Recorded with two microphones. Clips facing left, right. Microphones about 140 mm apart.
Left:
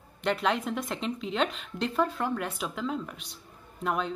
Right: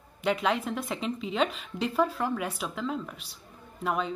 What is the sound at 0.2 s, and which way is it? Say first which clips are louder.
Speech: even; 5° right (ahead or behind).